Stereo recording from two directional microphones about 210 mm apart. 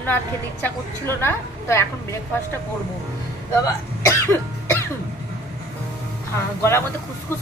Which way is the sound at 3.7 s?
15° left (ahead or behind).